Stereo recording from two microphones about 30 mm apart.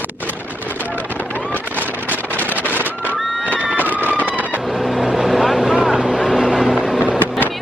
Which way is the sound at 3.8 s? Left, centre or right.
Left.